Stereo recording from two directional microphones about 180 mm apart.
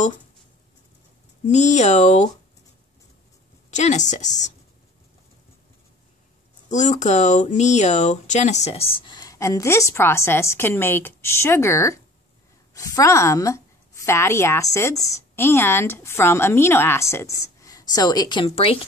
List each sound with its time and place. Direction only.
1.5 s a woman's voice: 40° left (ahead or behind)
3.7 s a woman's voice: 40° left (ahead or behind)
6.7 s a woman's voice: 40° left (ahead or behind)